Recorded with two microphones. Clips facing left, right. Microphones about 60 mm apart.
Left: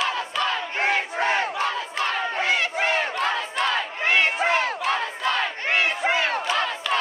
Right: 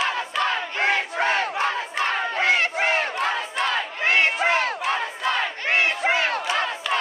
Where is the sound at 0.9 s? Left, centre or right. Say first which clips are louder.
Right 1 dB; right.